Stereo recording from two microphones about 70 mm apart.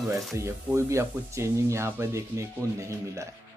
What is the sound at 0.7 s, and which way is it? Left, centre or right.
Speech, right.